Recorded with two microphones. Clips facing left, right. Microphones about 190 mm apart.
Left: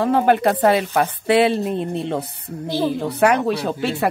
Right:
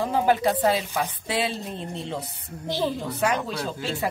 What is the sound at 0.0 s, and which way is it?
Speech, 60° left (ahead or behind).